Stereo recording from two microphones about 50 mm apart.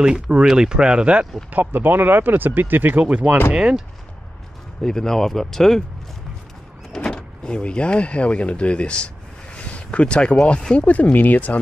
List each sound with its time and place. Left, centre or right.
0.0 s speech: centre
1.5 s speech: right
3.0 s speech: right
4.8 s speech: centre
6.9 s speech: centre; by 11.5 s left